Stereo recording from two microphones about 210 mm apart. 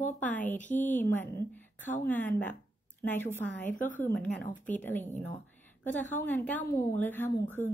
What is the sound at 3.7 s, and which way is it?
Speech, 40° left (ahead or behind).